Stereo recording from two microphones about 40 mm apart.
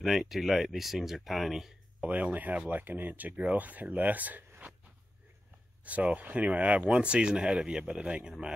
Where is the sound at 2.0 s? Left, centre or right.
Right.